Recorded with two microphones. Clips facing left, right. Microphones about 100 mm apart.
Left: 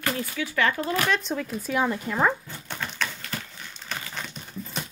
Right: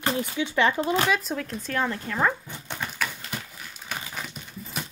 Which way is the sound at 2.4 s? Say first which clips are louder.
Right 1 dB; 20° right (ahead or behind).